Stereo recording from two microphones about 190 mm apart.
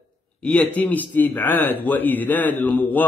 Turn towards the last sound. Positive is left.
turn(degrees=10)  # may be behind; listen again after turning